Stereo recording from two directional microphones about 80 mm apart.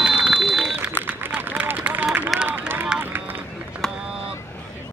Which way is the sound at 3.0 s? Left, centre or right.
Right.